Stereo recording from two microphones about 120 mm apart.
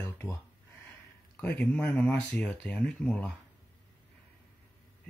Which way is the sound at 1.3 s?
15° left (ahead or behind).